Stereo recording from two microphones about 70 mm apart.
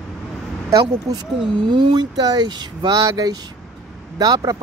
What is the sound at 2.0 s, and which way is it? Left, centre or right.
Speech, right.